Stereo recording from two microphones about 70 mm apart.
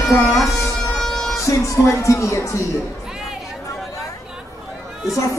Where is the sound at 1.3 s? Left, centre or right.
Left.